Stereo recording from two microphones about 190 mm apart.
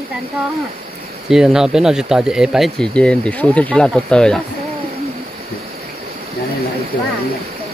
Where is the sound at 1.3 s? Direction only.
Centre (ahead or behind).